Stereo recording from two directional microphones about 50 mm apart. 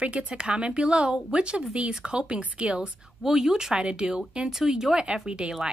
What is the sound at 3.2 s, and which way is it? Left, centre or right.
A woman's voice, centre.